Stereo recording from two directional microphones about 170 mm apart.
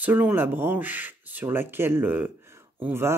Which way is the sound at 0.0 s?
10° right (ahead or behind).